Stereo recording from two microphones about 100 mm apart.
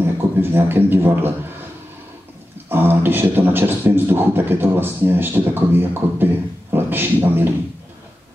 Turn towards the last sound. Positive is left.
turn(degrees=-20)  # may be behind; listen again after turning